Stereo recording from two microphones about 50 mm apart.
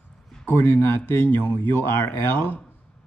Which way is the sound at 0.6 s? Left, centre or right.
Left.